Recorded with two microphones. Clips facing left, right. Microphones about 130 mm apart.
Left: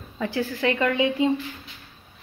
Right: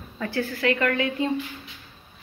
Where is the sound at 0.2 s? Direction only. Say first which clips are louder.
Left 1 dB; 15° left (ahead or behind).